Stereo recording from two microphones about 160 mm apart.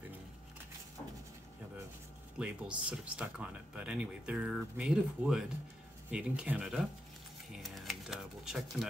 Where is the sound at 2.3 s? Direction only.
5° right (ahead or behind).